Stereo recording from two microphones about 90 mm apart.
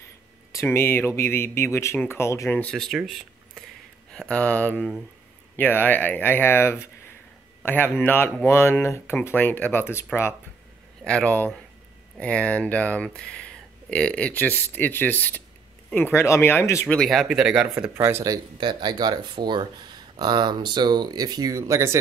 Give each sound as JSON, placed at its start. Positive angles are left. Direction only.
{"t": 0.5, "sound": "speech", "side_deg": 30}
{"t": 2.5, "sound": "speech", "side_deg": 10}
{"t": 2.9, "sound": "a sound", "side_deg": -5}
{"t": 4.1, "sound": "speech", "side_deg": 10}
{"t": 11.1, "sound": "speech", "side_deg": 15}
{"t": 16.9, "sound": "speech", "side_deg": 5}
{"t": 17.9, "sound": "speech", "side_deg": -30}
{"t": 18.6, "sound": "speech", "side_deg": -55}